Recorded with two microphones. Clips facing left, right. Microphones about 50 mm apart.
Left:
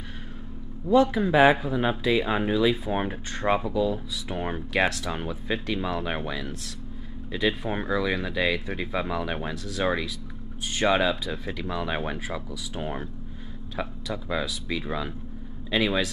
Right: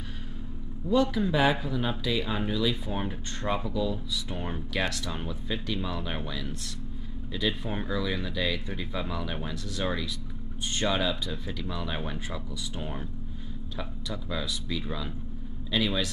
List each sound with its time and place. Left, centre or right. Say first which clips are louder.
1.1 s speech: left 6 dB; left